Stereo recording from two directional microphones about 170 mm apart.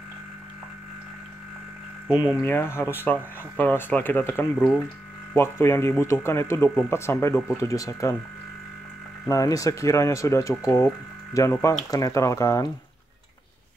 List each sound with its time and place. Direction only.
2.4 s speech: 15° left (ahead or behind)
9.3 s speech: 20° left (ahead or behind)